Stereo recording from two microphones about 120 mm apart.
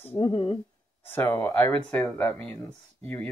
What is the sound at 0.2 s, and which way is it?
Speech, 50° left (ahead or behind).